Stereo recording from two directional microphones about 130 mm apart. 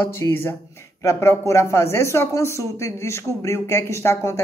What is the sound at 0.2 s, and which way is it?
Speech, 15° left (ahead or behind).